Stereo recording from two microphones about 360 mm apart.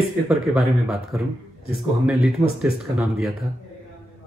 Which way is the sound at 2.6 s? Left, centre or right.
Centre.